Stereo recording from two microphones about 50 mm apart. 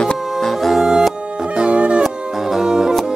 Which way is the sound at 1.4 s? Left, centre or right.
Right.